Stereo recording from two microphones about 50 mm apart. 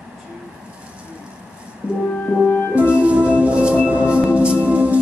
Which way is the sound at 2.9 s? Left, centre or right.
Right.